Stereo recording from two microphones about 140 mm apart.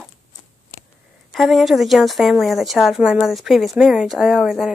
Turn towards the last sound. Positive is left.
turn(degrees=0)  # may be behind; listen again after turning